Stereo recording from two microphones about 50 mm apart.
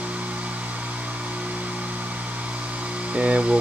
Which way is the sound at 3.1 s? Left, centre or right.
Right.